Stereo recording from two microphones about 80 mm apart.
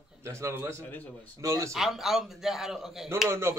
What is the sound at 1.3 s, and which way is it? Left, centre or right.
Speech, right.